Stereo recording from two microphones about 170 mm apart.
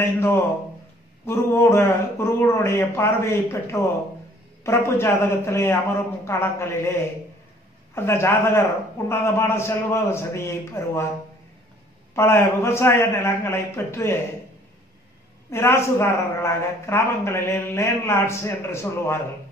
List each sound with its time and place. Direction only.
1.2 s a woman's voice: 15° left (ahead or behind)
7.9 s a woman's voice: 15° left (ahead or behind)
12.2 s a woman's voice: 15° left (ahead or behind)
15.5 s a woman's voice: 15° left (ahead or behind)